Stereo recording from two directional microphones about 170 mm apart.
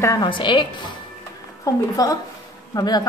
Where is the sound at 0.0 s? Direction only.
20° left (ahead or behind).